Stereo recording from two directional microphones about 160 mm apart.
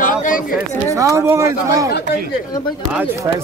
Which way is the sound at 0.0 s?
55° left (ahead or behind).